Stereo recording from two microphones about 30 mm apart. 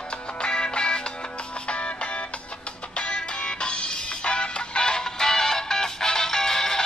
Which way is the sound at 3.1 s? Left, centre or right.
Left.